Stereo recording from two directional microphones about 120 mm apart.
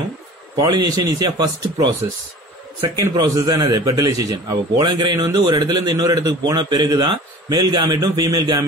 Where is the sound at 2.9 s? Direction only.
30° right (ahead or behind).